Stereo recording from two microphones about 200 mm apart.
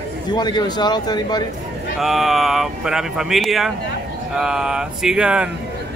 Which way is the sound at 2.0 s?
Centre (ahead or behind).